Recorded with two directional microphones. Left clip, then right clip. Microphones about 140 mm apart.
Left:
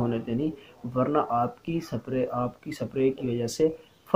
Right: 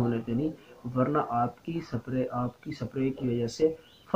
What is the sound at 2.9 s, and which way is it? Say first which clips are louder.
Speech: left 5 dB; 25° left (ahead or behind).